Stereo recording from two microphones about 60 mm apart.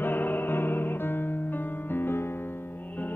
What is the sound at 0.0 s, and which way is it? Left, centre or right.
Music, left.